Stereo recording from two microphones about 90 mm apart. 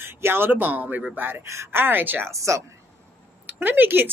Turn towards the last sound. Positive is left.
turn(degrees=-20)  # may be behind; listen again after turning